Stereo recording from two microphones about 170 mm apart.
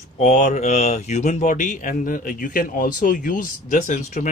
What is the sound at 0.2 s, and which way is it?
Speech, 45° left (ahead or behind).